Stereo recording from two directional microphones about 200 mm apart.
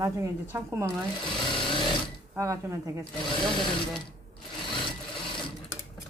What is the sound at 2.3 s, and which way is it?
Speech, 15° right (ahead or behind).